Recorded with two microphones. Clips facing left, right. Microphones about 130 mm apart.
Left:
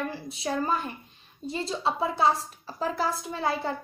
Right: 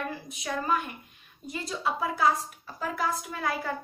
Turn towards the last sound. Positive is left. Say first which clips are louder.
# left 3 dB
turn(degrees=30)  # may be behind; listen again after turning